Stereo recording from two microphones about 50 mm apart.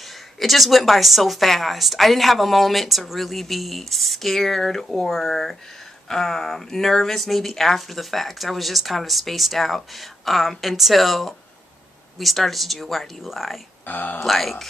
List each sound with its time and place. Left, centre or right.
0.4 s speech: centre
13.8 s speech: left
14.2 s speech: centre